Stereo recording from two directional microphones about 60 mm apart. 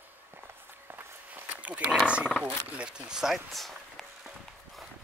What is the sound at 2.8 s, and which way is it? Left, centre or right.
Speech, centre.